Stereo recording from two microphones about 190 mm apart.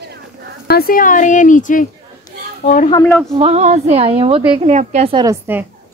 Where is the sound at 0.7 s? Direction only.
50° left (ahead or behind); by 2.8 s 35° left (ahead or behind).